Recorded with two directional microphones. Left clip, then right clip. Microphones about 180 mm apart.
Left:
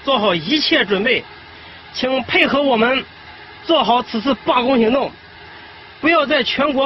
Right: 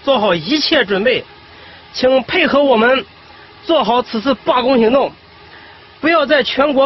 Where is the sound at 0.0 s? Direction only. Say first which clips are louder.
Right 3 dB; 45° right (ahead or behind).